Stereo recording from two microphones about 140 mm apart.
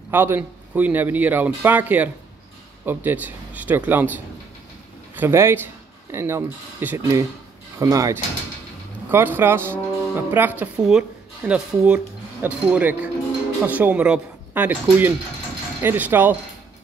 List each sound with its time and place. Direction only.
0.1 s speech: 15° right (ahead or behind)